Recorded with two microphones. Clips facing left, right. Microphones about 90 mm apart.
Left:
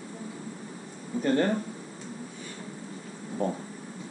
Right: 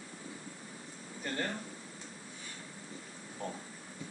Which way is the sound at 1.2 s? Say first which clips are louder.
Left 13 dB; 50° left (ahead or behind).